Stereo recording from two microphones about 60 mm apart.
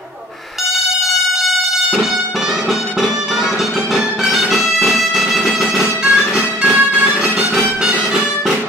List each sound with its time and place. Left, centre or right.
3.9 s music: centre
6.0 s music: centre